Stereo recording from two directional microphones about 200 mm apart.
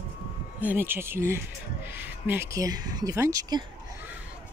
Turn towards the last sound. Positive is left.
turn(degrees=-15)  # may be behind; listen again after turning